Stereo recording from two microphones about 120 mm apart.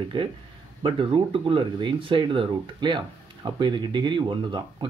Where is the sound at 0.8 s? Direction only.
45° right (ahead or behind).